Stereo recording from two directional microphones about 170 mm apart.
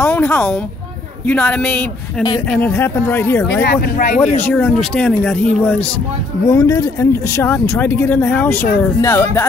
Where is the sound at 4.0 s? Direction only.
40° left (ahead or behind).